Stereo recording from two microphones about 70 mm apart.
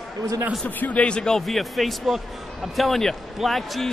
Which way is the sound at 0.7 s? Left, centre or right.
Left.